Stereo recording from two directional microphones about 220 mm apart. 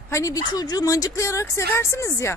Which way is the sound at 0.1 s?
15° left (ahead or behind).